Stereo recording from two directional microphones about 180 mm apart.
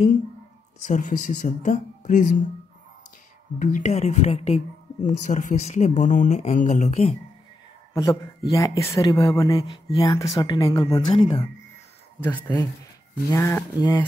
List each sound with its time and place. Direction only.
0.8 s speech: 45° left (ahead or behind)
3.5 s speech: 45° left (ahead or behind)
7.9 s speech: 20° left (ahead or behind)
12.2 s speech: 10° left (ahead or behind)